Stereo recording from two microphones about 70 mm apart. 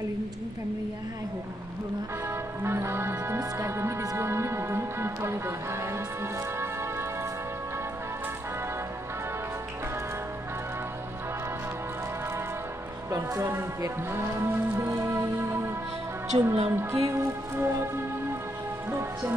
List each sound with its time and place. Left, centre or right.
2.2 s music: right
13.1 s speech: right
18.9 s music: right